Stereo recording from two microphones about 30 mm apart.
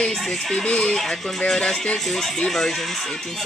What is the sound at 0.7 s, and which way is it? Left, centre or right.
Speech, left.